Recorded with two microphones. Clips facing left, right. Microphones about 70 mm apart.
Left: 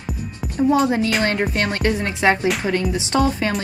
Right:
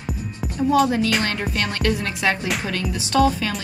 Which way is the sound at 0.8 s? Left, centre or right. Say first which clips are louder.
Left 2 dB; left.